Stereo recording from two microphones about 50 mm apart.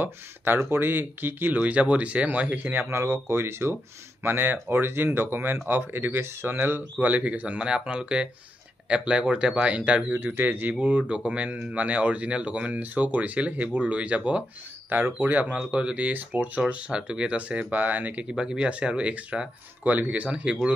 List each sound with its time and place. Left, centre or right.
0.7 s speech: right
1.6 s speech: right
2.9 s speech: right
7.0 s speech: right
10.3 s speech: right
10.8 s speech: right
14.9 s speech: right
16.1 s speech: right
18.3 s speech: centre